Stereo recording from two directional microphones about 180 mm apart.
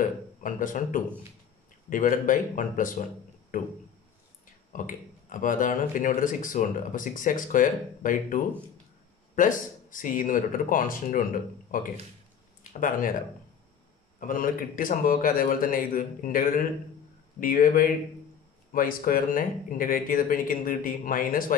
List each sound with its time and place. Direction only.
0.4 s speech: 50° left (ahead or behind)
4.7 s speech: 45° left (ahead or behind)
14.2 s speech: 50° left (ahead or behind)